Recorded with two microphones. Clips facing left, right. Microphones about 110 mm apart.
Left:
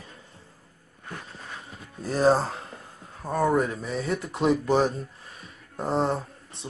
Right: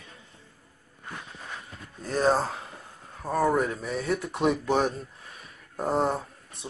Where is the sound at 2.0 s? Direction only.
5° left (ahead or behind).